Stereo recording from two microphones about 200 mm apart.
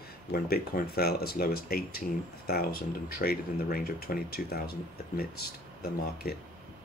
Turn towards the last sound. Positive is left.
turn(degrees=50)  # may be behind; listen again after turning